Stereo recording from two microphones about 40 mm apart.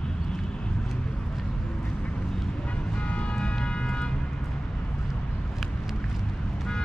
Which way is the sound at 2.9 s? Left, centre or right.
Left.